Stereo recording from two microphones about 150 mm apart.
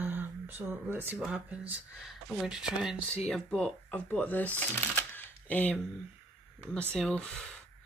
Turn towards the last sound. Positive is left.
turn(degrees=5)  # may be behind; listen again after turning